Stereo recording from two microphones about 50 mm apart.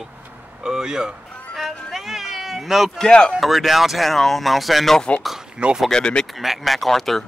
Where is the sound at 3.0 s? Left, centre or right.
Centre.